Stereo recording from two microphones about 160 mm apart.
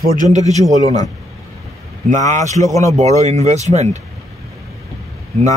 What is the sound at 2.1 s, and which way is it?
Speech, 50° right (ahead or behind).